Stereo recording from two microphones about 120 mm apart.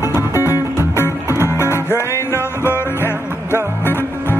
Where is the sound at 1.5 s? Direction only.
25° left (ahead or behind).